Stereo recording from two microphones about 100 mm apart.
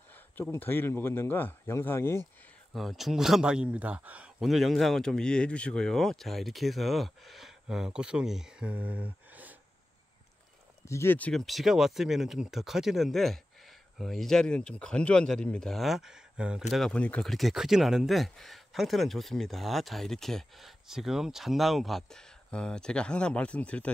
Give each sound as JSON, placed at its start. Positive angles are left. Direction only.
{"t": 0.4, "sound": "speech", "side_deg": 20}
{"t": 2.7, "sound": "speech", "side_deg": 0}
{"t": 4.4, "sound": "speech", "side_deg": 0}
{"t": 10.9, "sound": "speech", "side_deg": 25}
{"t": 11.3, "sound": "speech", "side_deg": 0}
{"t": 16.9, "sound": "speech", "side_deg": 10}
{"t": 17.3, "sound": "speech", "side_deg": 0}